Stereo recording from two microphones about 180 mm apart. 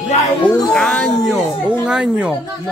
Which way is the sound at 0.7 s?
5° left (ahead or behind).